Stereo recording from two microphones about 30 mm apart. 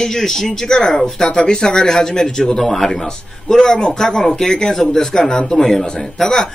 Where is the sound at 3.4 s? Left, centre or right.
Left.